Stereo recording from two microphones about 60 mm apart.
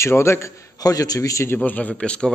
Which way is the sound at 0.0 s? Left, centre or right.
Left.